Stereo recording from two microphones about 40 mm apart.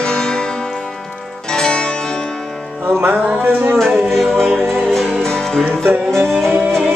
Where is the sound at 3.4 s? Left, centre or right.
Right.